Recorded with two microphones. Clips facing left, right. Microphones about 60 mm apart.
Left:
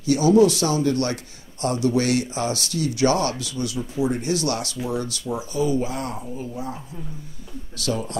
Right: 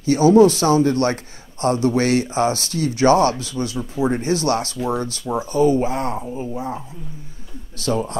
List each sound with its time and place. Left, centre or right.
0.0 s a man's voice: right